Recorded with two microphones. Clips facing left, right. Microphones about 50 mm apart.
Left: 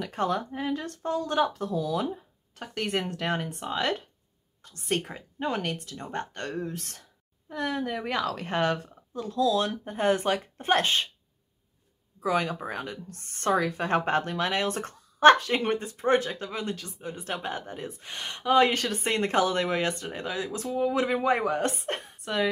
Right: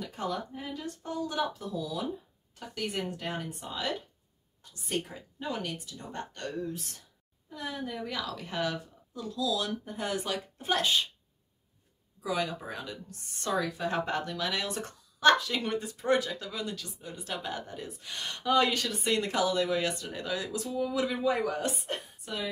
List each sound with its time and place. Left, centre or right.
0.0 s speech: left
12.2 s speech: left